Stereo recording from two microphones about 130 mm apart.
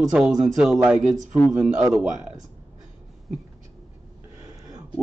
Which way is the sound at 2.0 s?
10° right (ahead or behind).